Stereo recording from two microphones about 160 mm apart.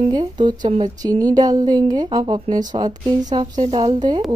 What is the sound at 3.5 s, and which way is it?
Speech, 40° right (ahead or behind).